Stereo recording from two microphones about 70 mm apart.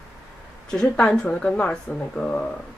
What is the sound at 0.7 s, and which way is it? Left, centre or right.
Speech, centre.